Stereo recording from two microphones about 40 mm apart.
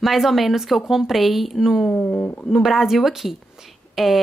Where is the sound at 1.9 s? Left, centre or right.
Left.